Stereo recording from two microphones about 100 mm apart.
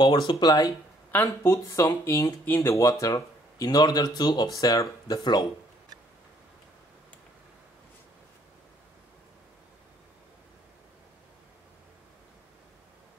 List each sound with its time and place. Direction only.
0.3 s speech: 40° left (ahead or behind)
1.1 s speech: 20° left (ahead or behind)
2.4 s speech: 20° left (ahead or behind); by 5.4 s 40° left (ahead or behind)